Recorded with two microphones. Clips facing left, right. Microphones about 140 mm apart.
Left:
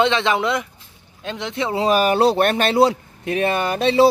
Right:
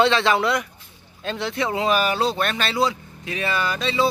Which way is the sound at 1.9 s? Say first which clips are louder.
Left 5 dB; 45° left (ahead or behind).